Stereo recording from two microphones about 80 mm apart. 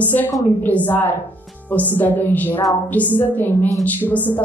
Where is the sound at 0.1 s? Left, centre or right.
Left.